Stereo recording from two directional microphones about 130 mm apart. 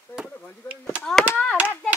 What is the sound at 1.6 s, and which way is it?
Speech, 15° left (ahead or behind).